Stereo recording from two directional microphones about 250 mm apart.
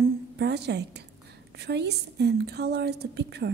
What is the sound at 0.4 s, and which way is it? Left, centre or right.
A woman's voice, right.